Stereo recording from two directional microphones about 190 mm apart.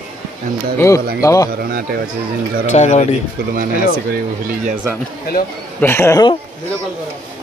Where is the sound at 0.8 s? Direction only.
15° left (ahead or behind).